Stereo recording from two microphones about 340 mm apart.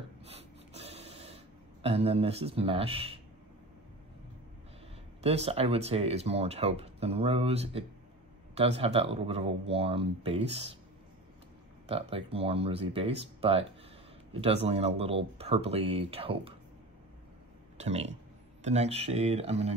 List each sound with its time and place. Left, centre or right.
0.2 s snort: centre
5.2 s speech: centre
11.9 s speech: centre
17.7 s speech: centre